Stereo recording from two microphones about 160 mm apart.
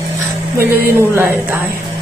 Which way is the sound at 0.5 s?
15° right (ahead or behind).